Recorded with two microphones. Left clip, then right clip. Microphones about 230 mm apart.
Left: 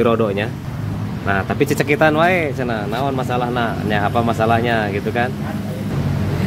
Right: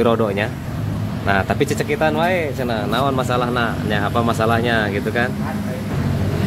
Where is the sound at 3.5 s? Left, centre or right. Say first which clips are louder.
Left 1 dB; centre.